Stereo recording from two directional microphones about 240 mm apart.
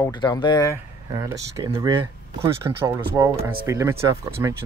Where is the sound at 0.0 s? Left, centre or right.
Centre.